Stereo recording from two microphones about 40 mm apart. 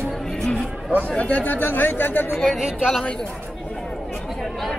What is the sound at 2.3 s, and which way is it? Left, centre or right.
Speech, centre.